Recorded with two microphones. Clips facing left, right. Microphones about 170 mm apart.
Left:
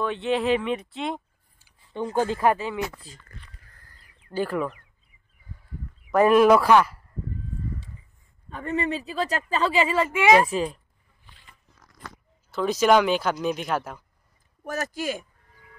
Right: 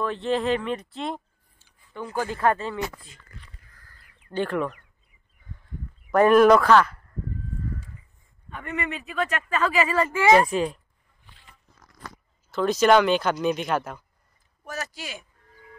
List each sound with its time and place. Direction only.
0.0 s speech: centre (ahead or behind)
2.0 s speech: 25° left (ahead or behind)
2.4 s speech: 10° left (ahead or behind)
4.3 s speech: 5° left (ahead or behind)
6.1 s speech: 5° left (ahead or behind)
8.5 s speech: 35° left (ahead or behind)
10.2 s speech: 5° left (ahead or behind)
12.4 s speech: 10° left (ahead or behind)
14.6 s speech: 50° left (ahead or behind)